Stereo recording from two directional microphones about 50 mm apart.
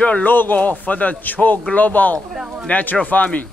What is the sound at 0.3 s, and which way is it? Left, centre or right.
Speech, left.